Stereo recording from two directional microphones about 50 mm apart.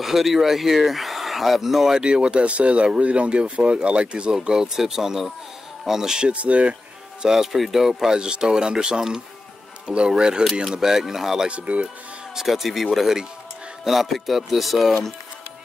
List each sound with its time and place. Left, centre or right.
0.0 s speech: centre
2.0 s speech: centre
4.4 s speech: centre
6.3 s speech: right
7.2 s speech: centre
11.4 s speech: right
12.4 s speech: centre